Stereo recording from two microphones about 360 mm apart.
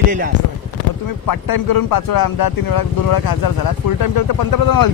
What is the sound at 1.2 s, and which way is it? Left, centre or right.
Speech, left.